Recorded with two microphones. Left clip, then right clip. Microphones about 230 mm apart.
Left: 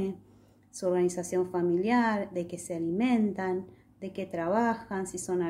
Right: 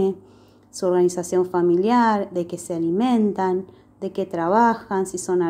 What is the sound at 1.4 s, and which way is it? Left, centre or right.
A woman's voice, centre.